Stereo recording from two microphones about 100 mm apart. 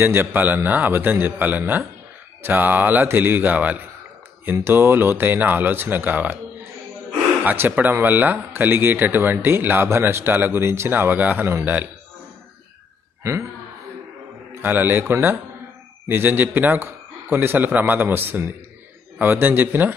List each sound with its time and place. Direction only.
0.0 s speech: 20° right (ahead or behind)
7.4 s speech: 20° right (ahead or behind)
13.2 s a man's voice: 30° right (ahead or behind)
14.5 s a man's voice: 20° right (ahead or behind)